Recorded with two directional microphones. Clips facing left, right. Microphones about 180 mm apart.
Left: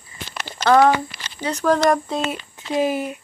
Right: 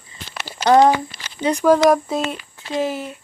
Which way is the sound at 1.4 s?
15° right (ahead or behind).